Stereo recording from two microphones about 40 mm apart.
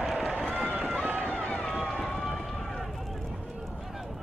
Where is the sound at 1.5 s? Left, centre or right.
Centre.